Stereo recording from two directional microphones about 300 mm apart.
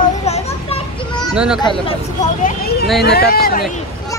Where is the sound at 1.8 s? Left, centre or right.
Left.